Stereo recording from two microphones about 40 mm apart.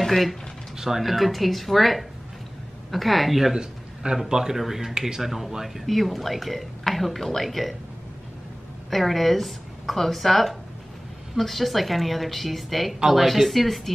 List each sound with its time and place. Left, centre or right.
0.0 s speech: centre
0.7 s a woman's voice: centre
3.5 s a man's voice: centre
8.9 s a woman's voice: centre